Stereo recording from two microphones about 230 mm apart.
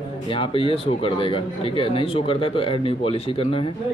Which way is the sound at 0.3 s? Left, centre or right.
Left.